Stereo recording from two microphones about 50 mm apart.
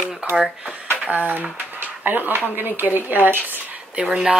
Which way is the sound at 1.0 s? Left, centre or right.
Right.